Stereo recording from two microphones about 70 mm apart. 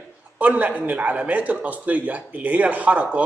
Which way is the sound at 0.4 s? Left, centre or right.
Right.